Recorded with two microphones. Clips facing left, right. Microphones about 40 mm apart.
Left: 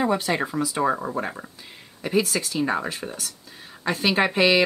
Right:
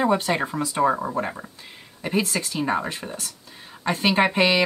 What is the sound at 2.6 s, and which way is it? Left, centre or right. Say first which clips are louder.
Speech: right 1 dB; centre.